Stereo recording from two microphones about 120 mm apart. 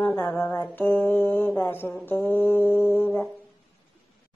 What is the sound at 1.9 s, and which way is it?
Music, 15° left (ahead or behind).